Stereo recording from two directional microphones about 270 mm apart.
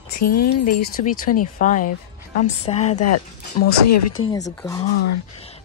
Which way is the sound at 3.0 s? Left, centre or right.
Left.